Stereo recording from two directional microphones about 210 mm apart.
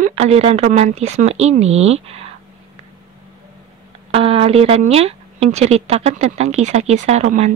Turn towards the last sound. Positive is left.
turn(degrees=-30)  # may be behind; listen again after turning